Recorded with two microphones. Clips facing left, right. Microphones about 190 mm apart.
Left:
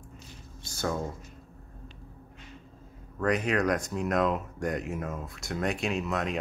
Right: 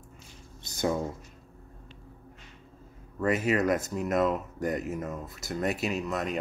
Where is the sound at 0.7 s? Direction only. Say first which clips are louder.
Right 3 dB; 15° right (ahead or behind).